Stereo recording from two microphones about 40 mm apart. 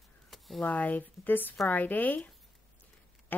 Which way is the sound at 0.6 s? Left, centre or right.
Left.